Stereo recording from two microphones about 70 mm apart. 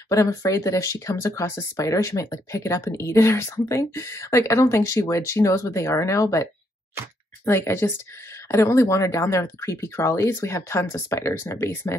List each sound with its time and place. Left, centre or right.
0.1 s speech: left
7.4 s a woman's voice: left